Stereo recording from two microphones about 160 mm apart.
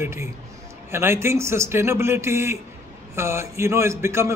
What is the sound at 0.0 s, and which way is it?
Speech, 15° right (ahead or behind).